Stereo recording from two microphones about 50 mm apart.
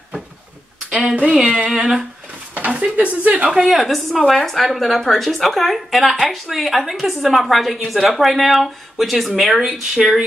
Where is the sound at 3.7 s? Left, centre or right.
Centre.